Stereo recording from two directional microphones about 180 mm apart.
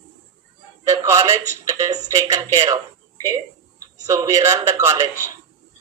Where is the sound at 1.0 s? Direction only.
15° right (ahead or behind).